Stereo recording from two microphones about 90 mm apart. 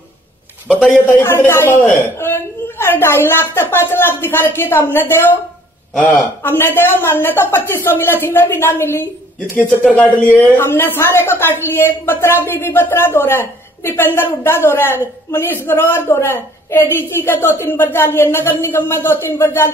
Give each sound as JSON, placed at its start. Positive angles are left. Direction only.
{"t": 1.1, "sound": "a woman's voice", "side_deg": 25}